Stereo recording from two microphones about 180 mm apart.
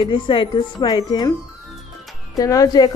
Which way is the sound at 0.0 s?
30° left (ahead or behind).